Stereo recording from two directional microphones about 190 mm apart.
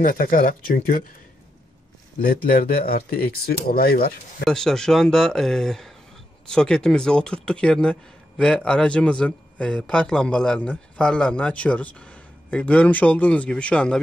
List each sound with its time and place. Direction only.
0.0 s speech: 50° left (ahead or behind)
2.1 s speech: 50° left (ahead or behind)
4.5 s speech: 5° left (ahead or behind)